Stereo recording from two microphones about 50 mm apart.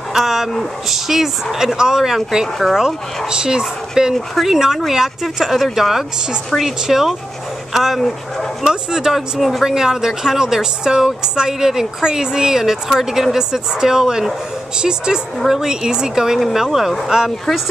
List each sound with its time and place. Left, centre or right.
0.1 s speech: centre
16.3 s speech: centre